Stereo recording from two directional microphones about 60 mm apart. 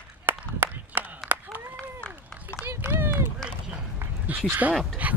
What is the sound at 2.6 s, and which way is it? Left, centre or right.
Run, right.